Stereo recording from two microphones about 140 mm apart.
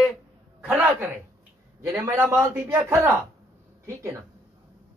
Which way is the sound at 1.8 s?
15° right (ahead or behind).